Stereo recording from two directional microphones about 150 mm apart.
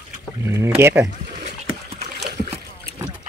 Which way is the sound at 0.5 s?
15° right (ahead or behind).